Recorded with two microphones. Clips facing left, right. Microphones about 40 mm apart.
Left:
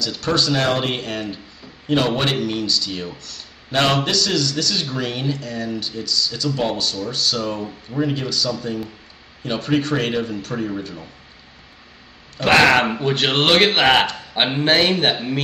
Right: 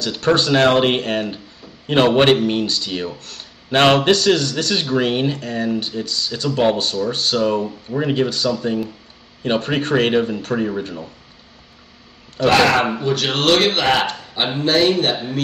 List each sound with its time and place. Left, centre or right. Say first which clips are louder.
0.0 s a man's voice: right 4 dB; right
12.4 s speech: even; left